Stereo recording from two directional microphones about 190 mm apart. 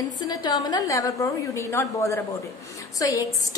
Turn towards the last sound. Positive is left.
turn(degrees=15)  # may be behind; listen again after turning